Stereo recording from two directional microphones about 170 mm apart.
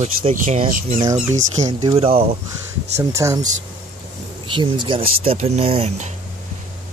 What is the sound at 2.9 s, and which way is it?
Speech, 20° right (ahead or behind).